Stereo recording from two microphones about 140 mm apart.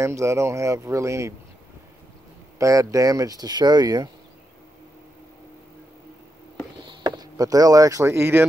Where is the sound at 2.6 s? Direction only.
20° right (ahead or behind).